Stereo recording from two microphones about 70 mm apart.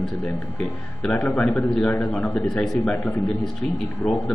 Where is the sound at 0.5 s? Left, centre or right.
Centre.